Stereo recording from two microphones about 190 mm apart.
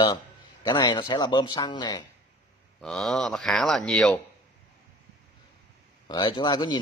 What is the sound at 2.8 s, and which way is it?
Speech, centre (ahead or behind).